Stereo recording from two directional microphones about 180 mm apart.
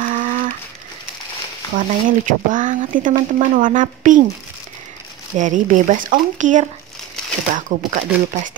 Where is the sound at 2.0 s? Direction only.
45° right (ahead or behind).